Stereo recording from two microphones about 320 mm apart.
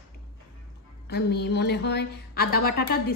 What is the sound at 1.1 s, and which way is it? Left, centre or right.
A woman's voice, left.